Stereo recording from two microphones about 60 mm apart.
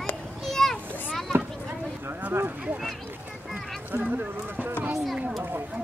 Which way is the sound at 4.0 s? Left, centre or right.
Right.